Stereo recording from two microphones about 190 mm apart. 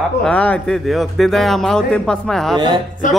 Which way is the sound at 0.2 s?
5° left (ahead or behind).